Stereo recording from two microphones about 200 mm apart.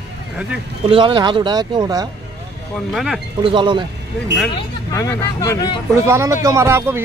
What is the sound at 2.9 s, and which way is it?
Speech, centre (ahead or behind).